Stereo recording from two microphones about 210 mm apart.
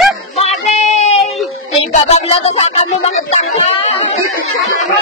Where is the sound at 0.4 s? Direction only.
30° left (ahead or behind).